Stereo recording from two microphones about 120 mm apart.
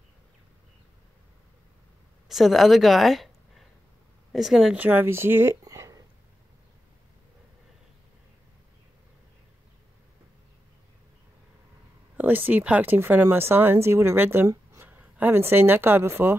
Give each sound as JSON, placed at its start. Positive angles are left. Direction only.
{"t": 2.2, "sound": "speech", "side_deg": 0}
{"t": 4.7, "sound": "speech", "side_deg": -15}
{"t": 5.6, "sound": "a sound", "side_deg": -30}
{"t": 12.2, "sound": "speech", "side_deg": -15}